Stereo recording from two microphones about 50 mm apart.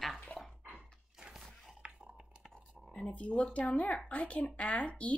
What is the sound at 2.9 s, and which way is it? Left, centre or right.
Speech, left.